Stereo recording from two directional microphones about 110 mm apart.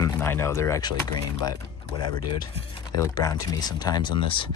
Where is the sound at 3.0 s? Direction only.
35° left (ahead or behind).